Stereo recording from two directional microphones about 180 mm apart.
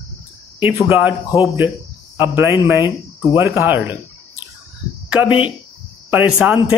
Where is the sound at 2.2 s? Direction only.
15° right (ahead or behind).